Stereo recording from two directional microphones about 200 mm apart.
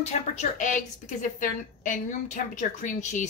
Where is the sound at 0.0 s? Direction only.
35° left (ahead or behind).